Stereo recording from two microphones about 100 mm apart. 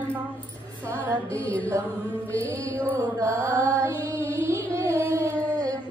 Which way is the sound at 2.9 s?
25° right (ahead or behind).